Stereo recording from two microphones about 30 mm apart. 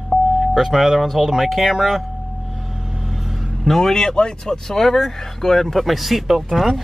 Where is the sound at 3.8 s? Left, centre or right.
Centre.